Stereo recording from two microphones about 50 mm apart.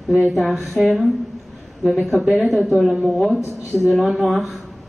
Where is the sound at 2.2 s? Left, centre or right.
Centre.